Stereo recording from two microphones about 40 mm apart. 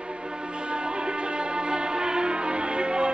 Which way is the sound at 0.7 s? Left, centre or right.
Right.